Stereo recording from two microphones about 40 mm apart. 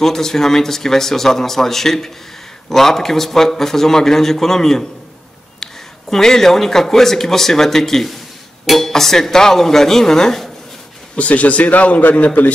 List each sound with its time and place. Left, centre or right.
0.0 s a man's voice: centre
11.1 s a man's voice: left